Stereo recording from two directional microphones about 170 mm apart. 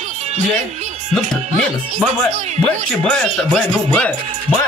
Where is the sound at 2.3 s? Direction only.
45° right (ahead or behind).